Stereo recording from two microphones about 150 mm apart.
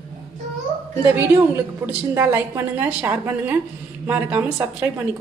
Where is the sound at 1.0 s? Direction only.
15° right (ahead or behind).